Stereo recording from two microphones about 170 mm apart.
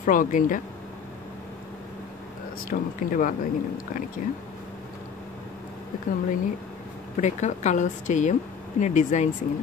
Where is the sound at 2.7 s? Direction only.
50° left (ahead or behind).